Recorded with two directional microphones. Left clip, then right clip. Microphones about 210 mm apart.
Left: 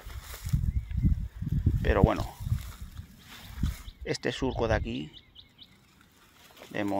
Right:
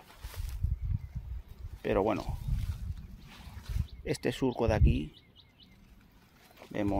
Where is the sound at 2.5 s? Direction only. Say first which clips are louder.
Left 4 dB; 50° left (ahead or behind).